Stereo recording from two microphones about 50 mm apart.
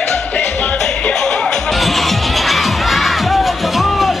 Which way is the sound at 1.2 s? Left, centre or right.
Centre.